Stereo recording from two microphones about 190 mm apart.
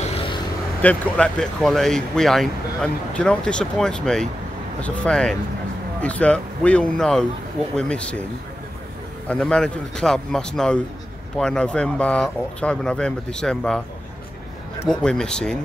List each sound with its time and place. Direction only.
0.0 s vehicle: 30° left (ahead or behind)
0.8 s speech: 5° left (ahead or behind)
9.3 s speech: 5° left (ahead or behind)
14.9 s speech: 5° left (ahead or behind)